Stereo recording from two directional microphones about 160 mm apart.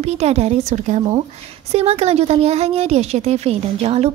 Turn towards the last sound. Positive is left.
turn(degrees=-40)  # may be behind; listen again after turning